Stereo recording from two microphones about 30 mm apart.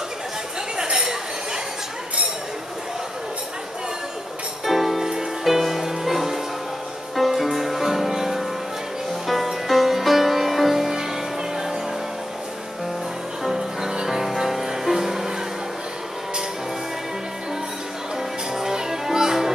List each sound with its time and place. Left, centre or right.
0.9 s chink: right
4.6 s music: centre
9.3 s music: centre
13.4 s music: centre
18.5 s music: centre